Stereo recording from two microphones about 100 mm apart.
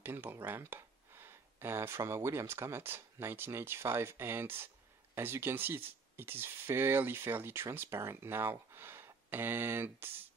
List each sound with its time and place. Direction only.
0.0 s speech: 20° right (ahead or behind)